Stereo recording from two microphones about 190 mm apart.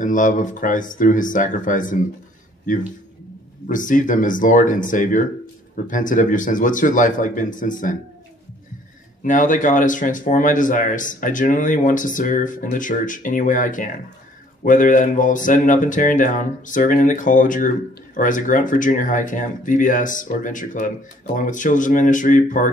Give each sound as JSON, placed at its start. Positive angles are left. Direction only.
{"t": 0.0, "sound": "speech", "side_deg": 45}
{"t": 9.2, "sound": "speech", "side_deg": 45}